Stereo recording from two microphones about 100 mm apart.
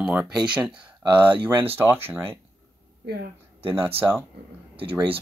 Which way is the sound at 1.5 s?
20° right (ahead or behind).